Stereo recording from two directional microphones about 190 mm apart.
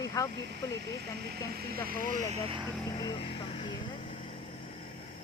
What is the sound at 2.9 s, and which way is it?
Speech, 25° left (ahead or behind).